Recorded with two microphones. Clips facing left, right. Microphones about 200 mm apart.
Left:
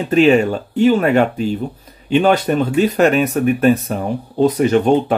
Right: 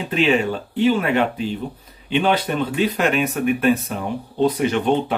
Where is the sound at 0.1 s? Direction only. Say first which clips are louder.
Left 7 dB; 45° left (ahead or behind).